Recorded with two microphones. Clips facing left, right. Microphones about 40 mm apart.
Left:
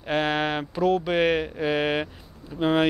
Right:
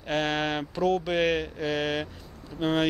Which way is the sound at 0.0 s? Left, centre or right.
Centre.